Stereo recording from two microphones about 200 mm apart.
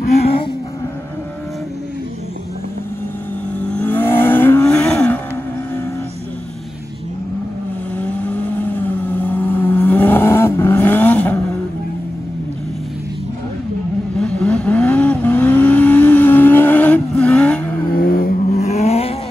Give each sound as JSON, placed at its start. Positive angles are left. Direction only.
{"t": 3.6, "sound": "vehicle", "side_deg": 10}
{"t": 8.0, "sound": "vehicle", "side_deg": 5}
{"t": 14.2, "sound": "vehicle", "side_deg": 5}
{"t": 17.9, "sound": "vehicle", "side_deg": 45}
{"t": 18.5, "sound": "vehicle", "side_deg": 35}